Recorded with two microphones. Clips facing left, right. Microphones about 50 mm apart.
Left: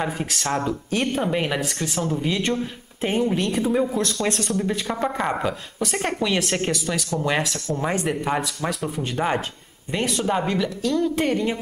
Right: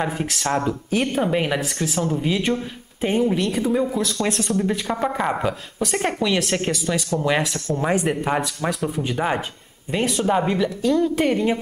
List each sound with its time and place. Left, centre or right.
0.0 s speech: centre